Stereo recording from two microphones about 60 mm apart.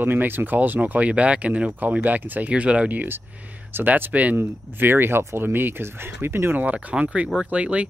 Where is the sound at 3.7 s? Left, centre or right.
Right.